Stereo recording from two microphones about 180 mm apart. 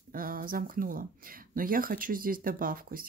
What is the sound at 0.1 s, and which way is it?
Speech, 50° right (ahead or behind).